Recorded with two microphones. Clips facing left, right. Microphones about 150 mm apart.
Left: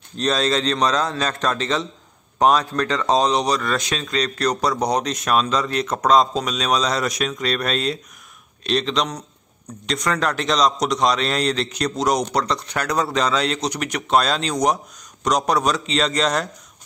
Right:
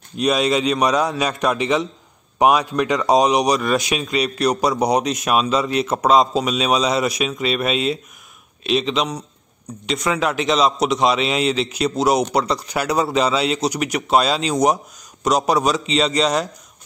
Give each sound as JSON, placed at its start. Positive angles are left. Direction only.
{"t": 0.2, "sound": "a man's voice", "side_deg": -10}